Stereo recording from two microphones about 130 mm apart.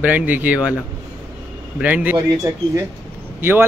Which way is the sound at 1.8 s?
10° right (ahead or behind).